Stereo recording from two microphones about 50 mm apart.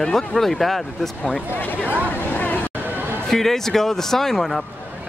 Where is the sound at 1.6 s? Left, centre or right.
Left.